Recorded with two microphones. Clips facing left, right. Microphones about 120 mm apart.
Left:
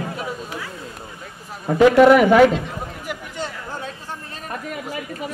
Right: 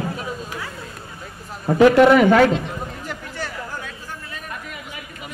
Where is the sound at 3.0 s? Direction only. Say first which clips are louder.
Left 1 dB; 20° left (ahead or behind).